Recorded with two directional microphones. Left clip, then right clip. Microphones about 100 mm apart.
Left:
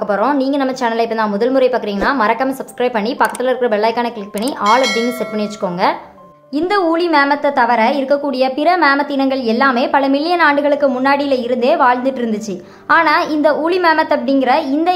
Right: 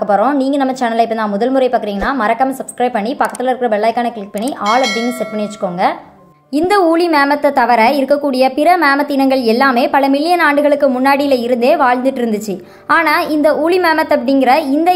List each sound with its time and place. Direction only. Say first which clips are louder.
0.4 s a woman's voice: right 2 dB; 25° right (ahead or behind)
4.6 s speech: left 1 dB; centre (ahead or behind)
5.4 s speech: right 2 dB; 15° right (ahead or behind)
6.5 s a woman's voice: right 3 dB; 35° right (ahead or behind)